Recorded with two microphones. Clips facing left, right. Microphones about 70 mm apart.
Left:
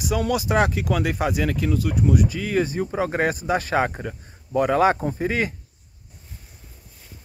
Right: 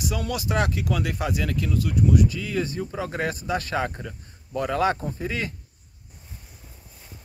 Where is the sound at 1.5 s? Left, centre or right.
Left.